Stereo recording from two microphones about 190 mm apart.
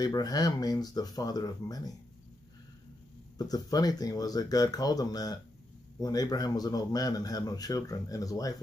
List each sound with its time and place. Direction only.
0.0 s a man's voice: 20° left (ahead or behind)
3.3 s a man's voice: 20° left (ahead or behind)